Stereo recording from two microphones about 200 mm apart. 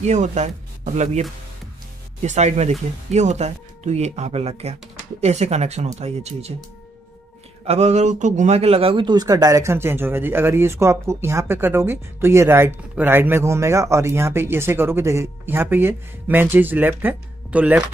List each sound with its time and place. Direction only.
0.0 s speech: 35° right (ahead or behind)
2.2 s speech: 35° right (ahead or behind)
7.6 s a man's voice: 30° right (ahead or behind); by 17.8 s 5° right (ahead or behind)